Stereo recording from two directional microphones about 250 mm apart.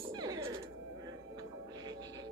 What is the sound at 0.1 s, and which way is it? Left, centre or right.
Music, centre.